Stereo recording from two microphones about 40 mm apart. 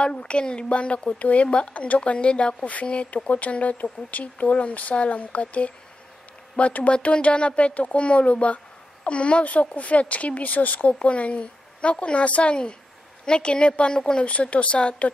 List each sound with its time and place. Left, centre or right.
0.0 s speech: left
10.9 s speech: left
14.2 s speech: left